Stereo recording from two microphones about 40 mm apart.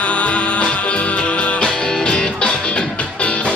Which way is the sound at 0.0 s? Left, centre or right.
Left.